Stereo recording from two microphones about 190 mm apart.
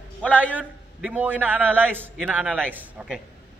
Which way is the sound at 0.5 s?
10° right (ahead or behind).